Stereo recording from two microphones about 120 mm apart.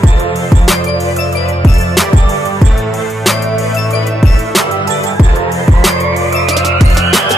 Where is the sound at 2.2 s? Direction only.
25° left (ahead or behind).